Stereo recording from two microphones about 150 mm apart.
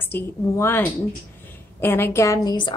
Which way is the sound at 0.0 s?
15° left (ahead or behind).